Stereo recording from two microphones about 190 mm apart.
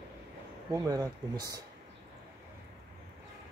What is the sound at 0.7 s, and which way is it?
Speech, 20° right (ahead or behind).